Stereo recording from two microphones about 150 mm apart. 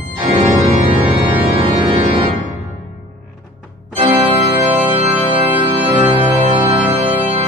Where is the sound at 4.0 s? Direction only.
40° right (ahead or behind).